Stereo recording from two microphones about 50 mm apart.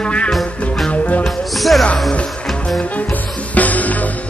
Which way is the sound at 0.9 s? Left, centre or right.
Left.